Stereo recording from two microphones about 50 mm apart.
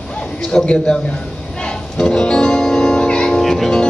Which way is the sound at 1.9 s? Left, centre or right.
Centre.